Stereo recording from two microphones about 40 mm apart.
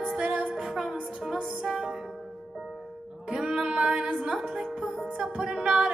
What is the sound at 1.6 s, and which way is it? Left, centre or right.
Music, centre.